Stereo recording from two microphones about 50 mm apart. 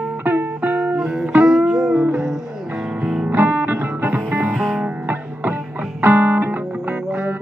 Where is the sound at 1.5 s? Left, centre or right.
Centre.